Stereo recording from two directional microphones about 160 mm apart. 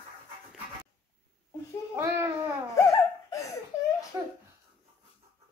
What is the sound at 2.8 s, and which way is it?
Laughter, 20° left (ahead or behind).